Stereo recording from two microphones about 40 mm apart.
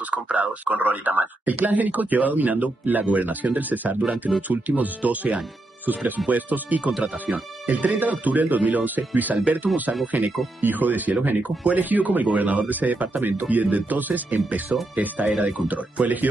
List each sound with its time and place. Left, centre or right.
0.1 s speech: right